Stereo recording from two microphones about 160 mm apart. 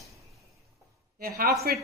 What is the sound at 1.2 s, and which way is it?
Speech, 70° right (ahead or behind).